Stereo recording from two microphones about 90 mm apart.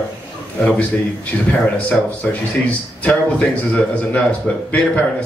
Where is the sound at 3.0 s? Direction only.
15° left (ahead or behind).